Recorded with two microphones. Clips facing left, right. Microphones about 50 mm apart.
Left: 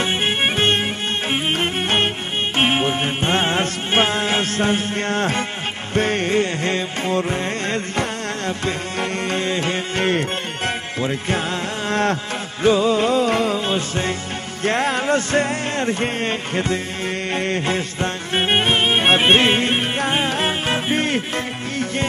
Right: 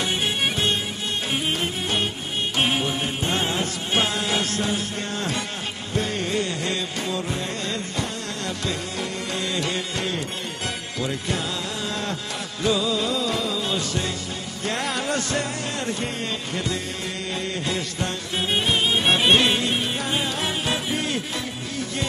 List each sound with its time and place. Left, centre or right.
0.0 s music: left
9.3 s music: left
11.9 s a sound: left
12.6 s music: left